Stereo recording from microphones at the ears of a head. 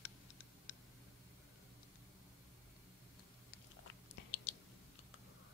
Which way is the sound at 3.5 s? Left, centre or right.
Left.